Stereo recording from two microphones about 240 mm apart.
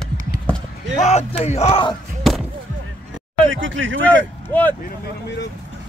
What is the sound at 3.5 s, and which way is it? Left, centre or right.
Speech, right.